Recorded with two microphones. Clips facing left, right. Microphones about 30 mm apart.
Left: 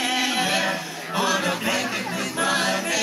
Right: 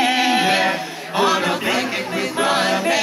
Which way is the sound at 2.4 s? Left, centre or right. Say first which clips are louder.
Right 5 dB; right.